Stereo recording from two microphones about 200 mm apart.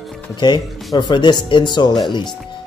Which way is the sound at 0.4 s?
20° left (ahead or behind).